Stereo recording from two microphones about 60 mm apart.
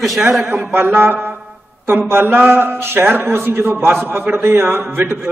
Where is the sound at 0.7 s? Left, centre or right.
Right.